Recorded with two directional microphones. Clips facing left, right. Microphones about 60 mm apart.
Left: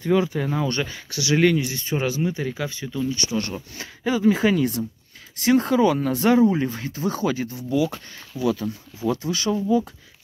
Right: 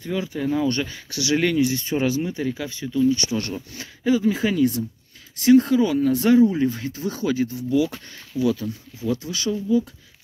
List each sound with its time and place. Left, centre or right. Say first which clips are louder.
0.0 s speech: left 7 dB; left
0.4 s speech: right 2 dB; left
3.8 s speech: even; left
6.2 s speech: even; left
9.1 s speech: left 1 dB; left